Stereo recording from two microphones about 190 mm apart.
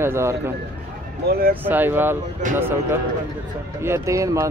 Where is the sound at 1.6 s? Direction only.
10° right (ahead or behind).